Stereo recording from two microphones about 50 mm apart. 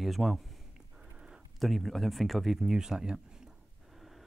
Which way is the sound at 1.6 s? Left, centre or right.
Centre.